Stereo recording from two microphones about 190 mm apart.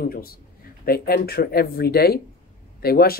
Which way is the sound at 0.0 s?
50° left (ahead or behind).